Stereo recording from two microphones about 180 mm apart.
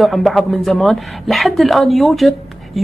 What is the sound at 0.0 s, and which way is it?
A woman's voice, centre (ahead or behind).